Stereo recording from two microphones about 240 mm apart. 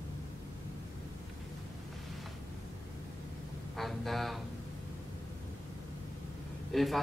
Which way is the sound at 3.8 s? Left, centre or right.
Centre.